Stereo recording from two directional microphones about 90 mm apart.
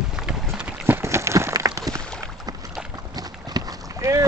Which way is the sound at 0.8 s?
25° right (ahead or behind).